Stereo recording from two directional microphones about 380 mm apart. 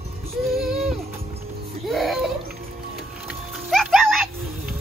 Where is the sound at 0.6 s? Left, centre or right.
Centre.